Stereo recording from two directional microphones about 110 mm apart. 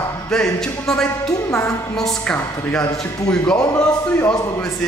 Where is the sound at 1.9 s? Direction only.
5° left (ahead or behind).